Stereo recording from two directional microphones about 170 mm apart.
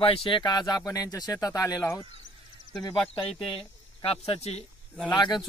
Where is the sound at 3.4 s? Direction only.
30° left (ahead or behind).